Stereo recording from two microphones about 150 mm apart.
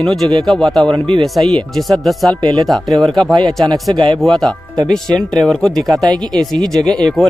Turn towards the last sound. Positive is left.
turn(degrees=5)  # may be behind; listen again after turning